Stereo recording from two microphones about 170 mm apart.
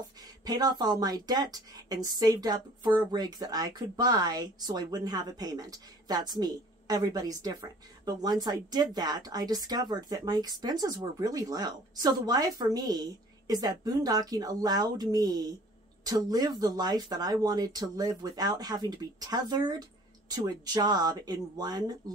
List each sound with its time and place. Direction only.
0.5 s a woman's voice: 25° right (ahead or behind)